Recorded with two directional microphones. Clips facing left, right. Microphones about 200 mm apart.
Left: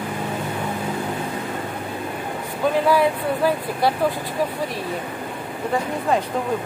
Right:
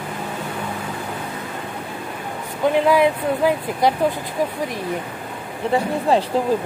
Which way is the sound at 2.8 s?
20° right (ahead or behind).